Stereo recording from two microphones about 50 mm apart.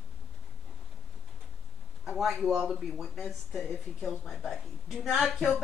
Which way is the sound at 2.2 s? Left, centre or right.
Centre.